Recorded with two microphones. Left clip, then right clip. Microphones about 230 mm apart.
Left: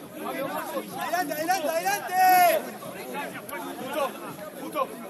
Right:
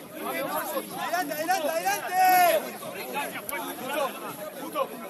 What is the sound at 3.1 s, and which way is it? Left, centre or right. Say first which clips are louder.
Chatter: right 2 dB; right.